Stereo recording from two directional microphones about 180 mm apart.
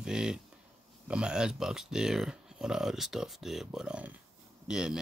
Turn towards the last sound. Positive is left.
turn(degrees=-5)  # may be behind; listen again after turning